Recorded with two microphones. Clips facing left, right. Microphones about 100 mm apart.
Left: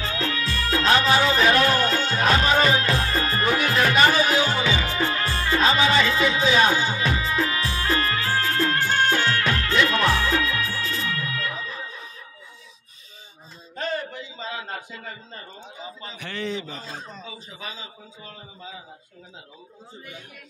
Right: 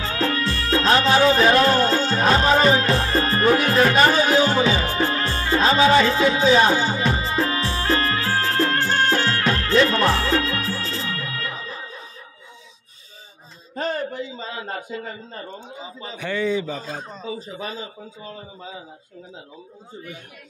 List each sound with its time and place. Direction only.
0.1 s music: 50° right (ahead or behind)
0.5 s music: 35° right (ahead or behind)
13.7 s a sound: 40° right (ahead or behind)
17.4 s a man's voice: 45° right (ahead or behind)